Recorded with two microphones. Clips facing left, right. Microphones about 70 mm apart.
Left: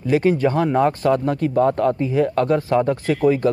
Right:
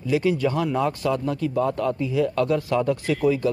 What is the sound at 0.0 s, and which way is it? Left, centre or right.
Speech, left.